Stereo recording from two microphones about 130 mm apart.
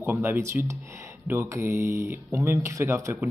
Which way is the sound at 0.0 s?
20° right (ahead or behind).